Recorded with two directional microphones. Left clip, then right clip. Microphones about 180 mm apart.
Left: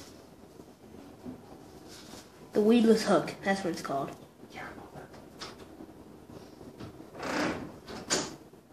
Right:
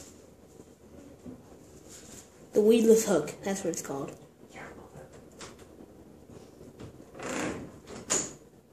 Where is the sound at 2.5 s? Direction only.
35° right (ahead or behind).